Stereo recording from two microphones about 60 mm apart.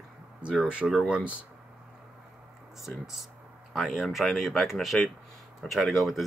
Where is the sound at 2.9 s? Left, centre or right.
Centre.